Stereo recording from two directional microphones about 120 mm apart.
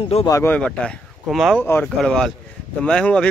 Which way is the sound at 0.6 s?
10° left (ahead or behind).